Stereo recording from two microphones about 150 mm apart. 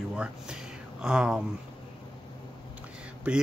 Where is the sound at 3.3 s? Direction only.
10° right (ahead or behind).